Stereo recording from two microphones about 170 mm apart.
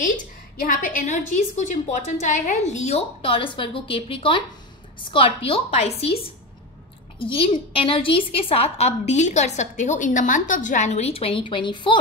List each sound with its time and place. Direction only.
0.0 s a woman's voice: 50° left (ahead or behind)
7.2 s a woman's voice: 30° left (ahead or behind)